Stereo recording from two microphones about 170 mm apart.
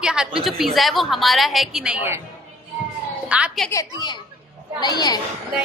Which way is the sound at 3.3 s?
5° right (ahead or behind).